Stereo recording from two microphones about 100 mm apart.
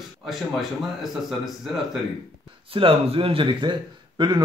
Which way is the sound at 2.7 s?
65° right (ahead or behind).